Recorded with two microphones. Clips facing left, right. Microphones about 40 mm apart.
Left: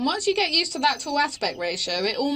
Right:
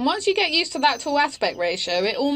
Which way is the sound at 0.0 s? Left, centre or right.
Right.